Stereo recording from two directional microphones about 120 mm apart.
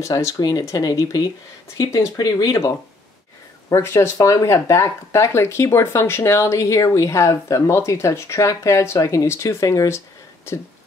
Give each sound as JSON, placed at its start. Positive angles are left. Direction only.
{"t": 0.0, "sound": "speech", "side_deg": 25}